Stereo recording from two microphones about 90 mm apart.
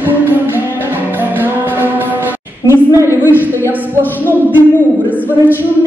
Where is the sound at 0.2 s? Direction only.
20° right (ahead or behind).